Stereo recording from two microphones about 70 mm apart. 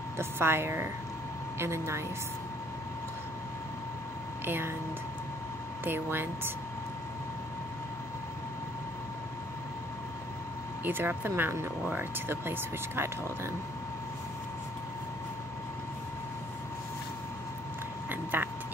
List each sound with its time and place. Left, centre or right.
0.2 s speech: right
4.5 s speech: right
5.9 s speech: right
10.8 s speech: right
18.1 s vehicle: right